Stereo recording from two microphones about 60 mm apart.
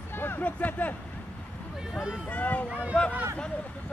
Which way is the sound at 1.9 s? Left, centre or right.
Centre.